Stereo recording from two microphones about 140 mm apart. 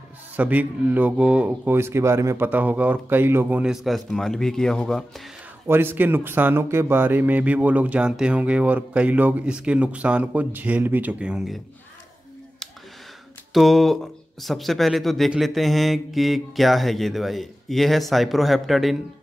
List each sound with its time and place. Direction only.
0.4 s speech: 10° right (ahead or behind)
5.7 s speech: 15° right (ahead or behind)
13.5 s speech: centre (ahead or behind)